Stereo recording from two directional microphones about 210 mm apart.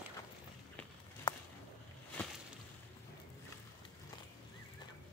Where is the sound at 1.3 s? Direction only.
25° left (ahead or behind).